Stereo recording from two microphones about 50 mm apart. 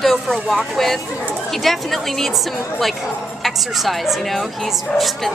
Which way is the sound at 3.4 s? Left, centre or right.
Centre.